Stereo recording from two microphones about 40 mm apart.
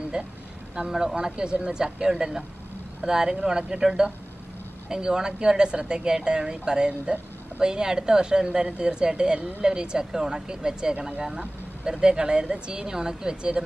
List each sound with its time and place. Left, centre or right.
0.1 s a woman's voice: right